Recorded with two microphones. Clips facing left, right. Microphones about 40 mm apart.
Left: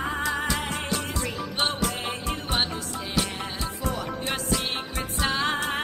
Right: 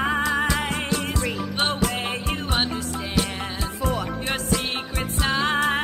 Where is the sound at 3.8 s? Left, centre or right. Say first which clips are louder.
Right 5 dB; right.